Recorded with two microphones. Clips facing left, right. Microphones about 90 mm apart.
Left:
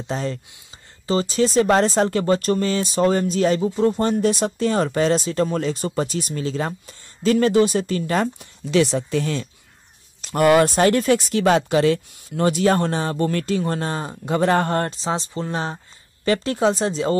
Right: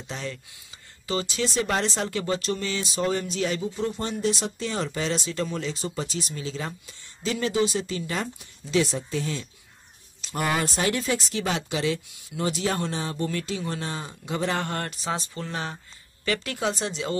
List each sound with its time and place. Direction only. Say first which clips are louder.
0.1 s speech: left 8 dB; 40° left (ahead or behind)